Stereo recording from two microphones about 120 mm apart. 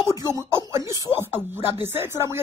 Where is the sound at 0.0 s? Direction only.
25° right (ahead or behind).